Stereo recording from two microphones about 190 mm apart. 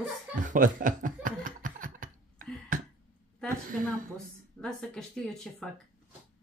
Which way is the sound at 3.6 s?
45° right (ahead or behind).